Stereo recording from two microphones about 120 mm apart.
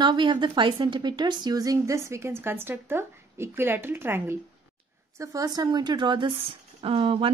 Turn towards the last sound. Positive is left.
turn(degrees=-45)  # may be behind; listen again after turning